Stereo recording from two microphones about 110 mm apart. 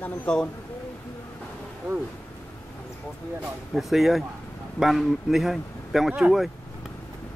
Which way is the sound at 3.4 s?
Centre (ahead or behind).